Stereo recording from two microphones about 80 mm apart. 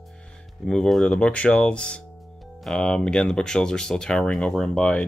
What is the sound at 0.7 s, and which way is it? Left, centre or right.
Speech, centre.